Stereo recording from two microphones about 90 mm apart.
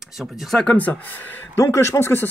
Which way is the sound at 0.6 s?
20° left (ahead or behind).